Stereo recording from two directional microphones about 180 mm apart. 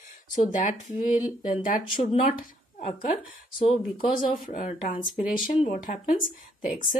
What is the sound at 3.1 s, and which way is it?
Speech, 35° left (ahead or behind).